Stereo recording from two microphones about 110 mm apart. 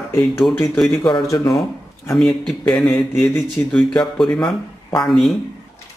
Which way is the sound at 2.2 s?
5° left (ahead or behind).